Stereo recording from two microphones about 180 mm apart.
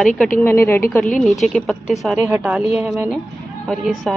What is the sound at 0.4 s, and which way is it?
Speech, 15° left (ahead or behind).